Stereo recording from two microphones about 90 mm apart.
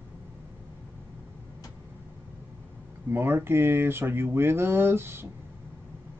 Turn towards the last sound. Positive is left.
turn(degrees=-25)  # may be behind; listen again after turning